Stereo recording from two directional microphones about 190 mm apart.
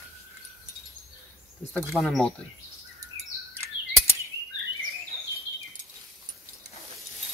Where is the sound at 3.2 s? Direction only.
35° left (ahead or behind).